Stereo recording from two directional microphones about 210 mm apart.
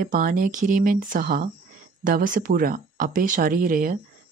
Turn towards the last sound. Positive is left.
turn(degrees=-40)  # may be behind; listen again after turning